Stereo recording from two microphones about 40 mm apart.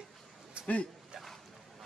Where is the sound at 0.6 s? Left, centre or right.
Left.